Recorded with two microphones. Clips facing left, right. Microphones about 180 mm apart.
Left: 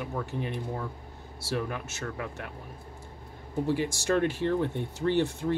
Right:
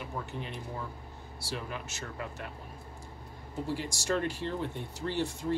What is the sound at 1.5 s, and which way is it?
Speech, 60° left (ahead or behind).